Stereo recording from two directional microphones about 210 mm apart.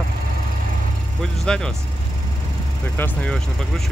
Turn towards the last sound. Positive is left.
turn(degrees=5)  # may be behind; listen again after turning